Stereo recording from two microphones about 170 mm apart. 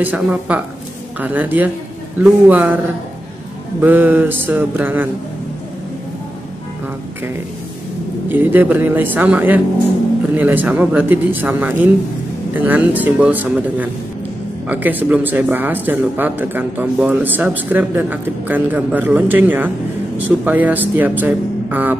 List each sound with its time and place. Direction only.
0.0 s speech: 10° right (ahead or behind)
3.8 s speech: 10° right (ahead or behind)
8.3 s speech: 10° right (ahead or behind)